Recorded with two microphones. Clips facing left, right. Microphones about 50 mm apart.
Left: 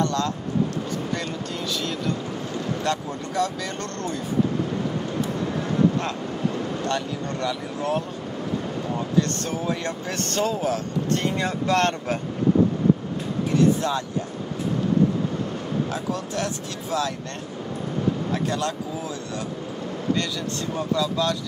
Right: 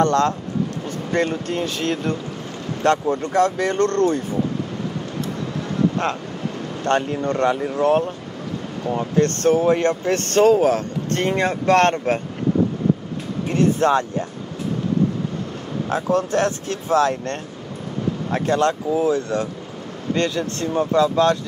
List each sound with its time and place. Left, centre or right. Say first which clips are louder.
0.0 s speech: right 7 dB; right
6.8 s speech: right 6 dB; right
13.5 s speech: right 4 dB; right
15.9 s speech: right 8 dB; right
18.3 s speech: right 6 dB; right